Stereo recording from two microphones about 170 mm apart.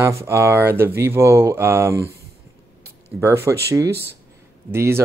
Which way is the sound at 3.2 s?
15° right (ahead or behind).